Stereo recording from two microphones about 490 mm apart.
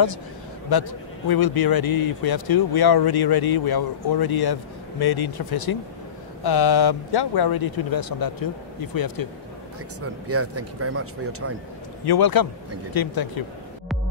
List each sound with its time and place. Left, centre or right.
0.7 s speech: left
10.2 s speech: right
12.0 s speech: left